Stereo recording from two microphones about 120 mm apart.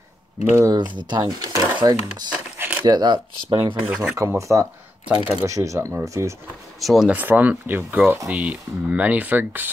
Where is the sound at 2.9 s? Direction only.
35° right (ahead or behind).